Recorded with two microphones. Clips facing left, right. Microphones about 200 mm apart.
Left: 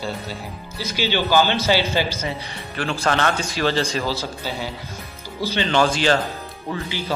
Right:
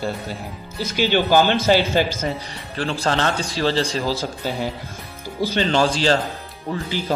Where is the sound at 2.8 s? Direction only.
30° right (ahead or behind).